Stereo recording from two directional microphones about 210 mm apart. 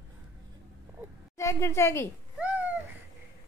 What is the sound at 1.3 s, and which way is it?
Speech, 15° left (ahead or behind).